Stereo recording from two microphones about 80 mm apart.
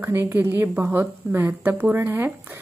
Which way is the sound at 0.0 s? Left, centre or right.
Right.